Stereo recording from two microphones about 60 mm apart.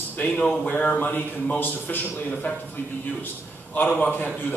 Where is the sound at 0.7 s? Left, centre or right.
Left.